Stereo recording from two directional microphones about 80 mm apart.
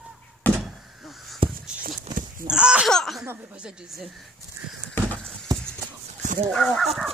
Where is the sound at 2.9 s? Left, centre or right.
Centre.